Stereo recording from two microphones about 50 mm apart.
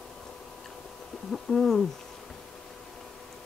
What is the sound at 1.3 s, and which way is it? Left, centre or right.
Speech, centre.